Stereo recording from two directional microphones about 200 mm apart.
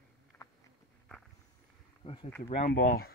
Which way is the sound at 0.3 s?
10° left (ahead or behind).